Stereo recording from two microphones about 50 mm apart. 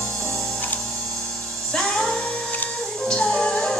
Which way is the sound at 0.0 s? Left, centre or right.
Centre.